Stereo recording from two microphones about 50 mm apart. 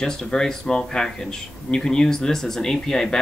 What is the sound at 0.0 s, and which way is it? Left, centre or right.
Speech, centre.